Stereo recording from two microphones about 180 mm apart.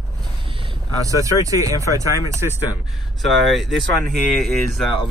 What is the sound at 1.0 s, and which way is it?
Speech, 20° right (ahead or behind).